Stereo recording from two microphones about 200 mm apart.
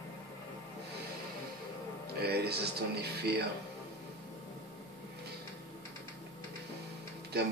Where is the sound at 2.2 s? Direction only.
50° right (ahead or behind).